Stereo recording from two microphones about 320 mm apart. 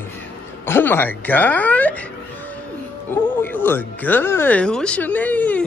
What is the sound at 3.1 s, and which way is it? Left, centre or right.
Speech, centre.